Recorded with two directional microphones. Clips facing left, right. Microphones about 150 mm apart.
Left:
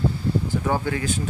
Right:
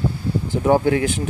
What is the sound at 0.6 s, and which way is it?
Speech, 55° right (ahead or behind).